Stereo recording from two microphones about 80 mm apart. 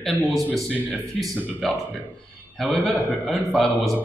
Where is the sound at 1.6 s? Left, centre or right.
Centre.